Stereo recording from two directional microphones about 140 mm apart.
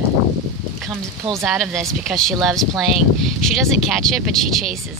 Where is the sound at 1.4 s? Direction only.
Centre (ahead or behind).